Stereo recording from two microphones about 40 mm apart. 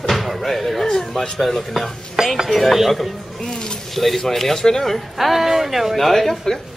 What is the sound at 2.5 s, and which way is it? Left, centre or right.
Speech, centre.